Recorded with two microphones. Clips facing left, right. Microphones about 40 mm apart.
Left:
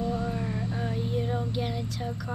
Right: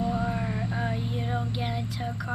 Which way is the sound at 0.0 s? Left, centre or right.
Centre.